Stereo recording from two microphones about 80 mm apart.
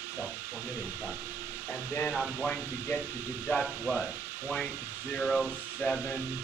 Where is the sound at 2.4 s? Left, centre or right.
Centre.